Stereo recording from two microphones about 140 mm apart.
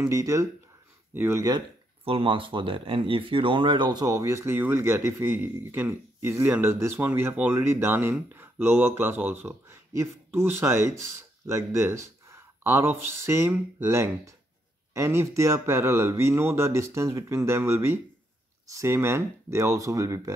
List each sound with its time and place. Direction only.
0.0 s speech: 25° right (ahead or behind)
2.0 s speech: 40° right (ahead or behind); by 20.3 s 20° right (ahead or behind)